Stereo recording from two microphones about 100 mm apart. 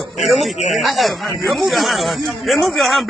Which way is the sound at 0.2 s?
Centre (ahead or behind).